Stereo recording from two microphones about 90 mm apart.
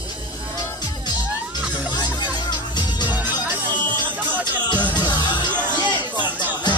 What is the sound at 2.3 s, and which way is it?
Music, 55° left (ahead or behind).